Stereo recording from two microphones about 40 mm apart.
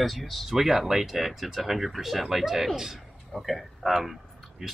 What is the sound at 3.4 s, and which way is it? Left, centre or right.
Speech, centre.